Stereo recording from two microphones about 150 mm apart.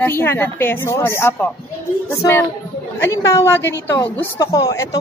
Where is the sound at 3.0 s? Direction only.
20° left (ahead or behind).